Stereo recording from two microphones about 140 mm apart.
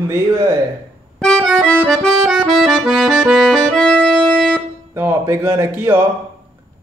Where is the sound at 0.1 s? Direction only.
25° right (ahead or behind).